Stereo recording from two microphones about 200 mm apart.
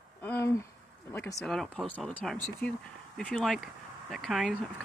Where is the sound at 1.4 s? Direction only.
Centre (ahead or behind).